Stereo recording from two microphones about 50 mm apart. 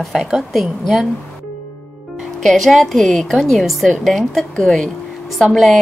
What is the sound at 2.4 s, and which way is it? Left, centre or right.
A woman's voice, centre.